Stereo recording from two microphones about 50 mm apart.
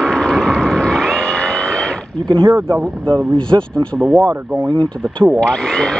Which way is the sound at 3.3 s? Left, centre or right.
Centre.